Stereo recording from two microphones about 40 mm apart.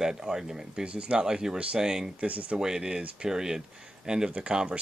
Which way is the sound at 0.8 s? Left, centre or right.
Right.